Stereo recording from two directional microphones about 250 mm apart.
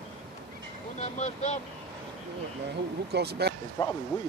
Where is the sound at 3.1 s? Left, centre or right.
Right.